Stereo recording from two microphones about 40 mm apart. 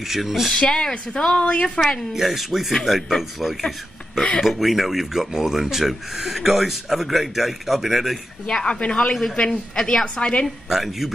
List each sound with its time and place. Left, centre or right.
0.0 s speech: centre
0.5 s a woman's voice: centre
2.1 s speech: centre
8.5 s a woman's voice: centre
10.7 s speech: centre